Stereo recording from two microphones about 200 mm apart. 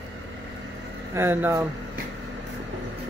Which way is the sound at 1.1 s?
10° right (ahead or behind).